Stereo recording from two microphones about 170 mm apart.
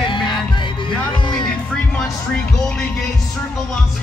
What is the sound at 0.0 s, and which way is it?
Music, 25° left (ahead or behind).